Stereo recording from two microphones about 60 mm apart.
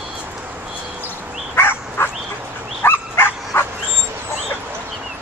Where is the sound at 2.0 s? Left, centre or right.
Left.